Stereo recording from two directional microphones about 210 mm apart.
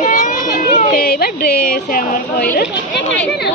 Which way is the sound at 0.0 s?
40° left (ahead or behind).